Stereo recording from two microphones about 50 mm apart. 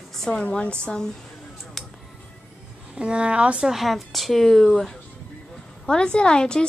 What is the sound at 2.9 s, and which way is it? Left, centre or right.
Speech, right.